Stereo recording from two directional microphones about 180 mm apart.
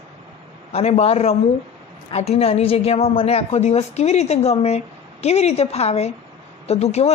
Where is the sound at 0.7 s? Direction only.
35° left (ahead or behind).